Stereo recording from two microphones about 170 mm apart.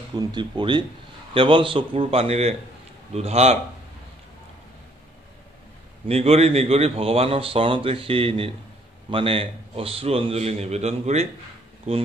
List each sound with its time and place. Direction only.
0.1 s speech: 25° right (ahead or behind)
6.0 s speech: 35° right (ahead or behind)